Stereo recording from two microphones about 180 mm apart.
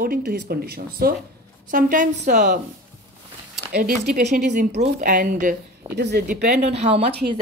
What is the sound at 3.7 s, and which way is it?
Speech, 55° right (ahead or behind).